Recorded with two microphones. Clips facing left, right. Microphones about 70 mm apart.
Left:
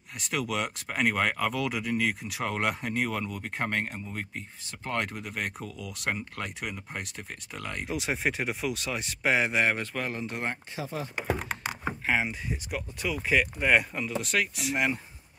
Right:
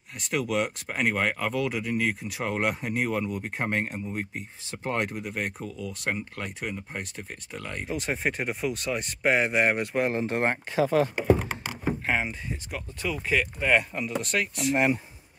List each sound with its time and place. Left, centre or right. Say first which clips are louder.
0.2 s speech: right 4 dB; centre
9.9 s speech: right 7 dB; right
10.5 s speech: right 12 dB; right
12.1 s speech: left 4 dB; centre